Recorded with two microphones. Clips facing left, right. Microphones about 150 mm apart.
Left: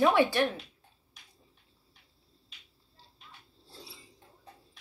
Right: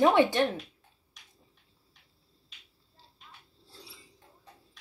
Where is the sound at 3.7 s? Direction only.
25° left (ahead or behind).